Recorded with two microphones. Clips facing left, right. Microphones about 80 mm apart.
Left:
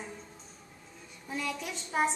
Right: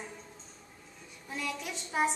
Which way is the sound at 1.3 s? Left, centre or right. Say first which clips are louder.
Left 2 dB; centre.